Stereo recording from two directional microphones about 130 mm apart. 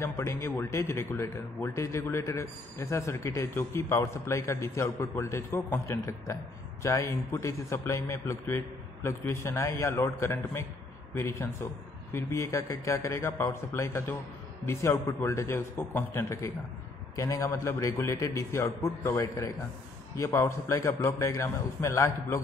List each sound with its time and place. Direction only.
0.0 s a man's voice: 20° left (ahead or behind)